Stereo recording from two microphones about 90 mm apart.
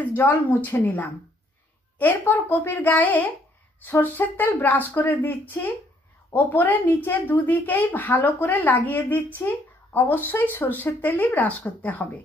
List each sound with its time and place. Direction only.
0.1 s speech: 25° left (ahead or behind)